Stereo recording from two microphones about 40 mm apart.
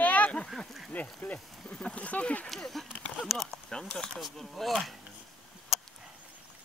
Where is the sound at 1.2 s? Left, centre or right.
Left.